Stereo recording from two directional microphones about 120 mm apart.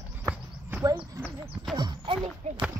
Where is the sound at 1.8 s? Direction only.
45° right (ahead or behind).